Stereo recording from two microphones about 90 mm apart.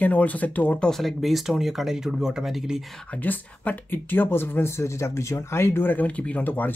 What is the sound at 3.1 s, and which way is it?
Speech, 20° left (ahead or behind).